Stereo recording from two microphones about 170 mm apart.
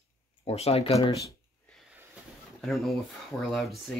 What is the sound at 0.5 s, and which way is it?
Speech, 35° left (ahead or behind).